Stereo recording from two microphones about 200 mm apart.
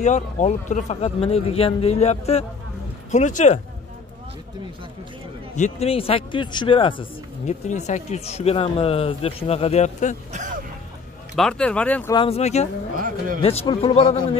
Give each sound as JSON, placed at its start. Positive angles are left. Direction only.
{"t": 0.0, "sound": "speech", "side_deg": 35}
{"t": 5.6, "sound": "speech", "side_deg": 30}
{"t": 10.3, "sound": "speech", "side_deg": -40}
{"t": 11.3, "sound": "speech", "side_deg": 5}
{"t": 12.1, "sound": "speech", "side_deg": 25}
{"t": 12.9, "sound": "speech", "side_deg": -45}
{"t": 13.4, "sound": "speech", "side_deg": 30}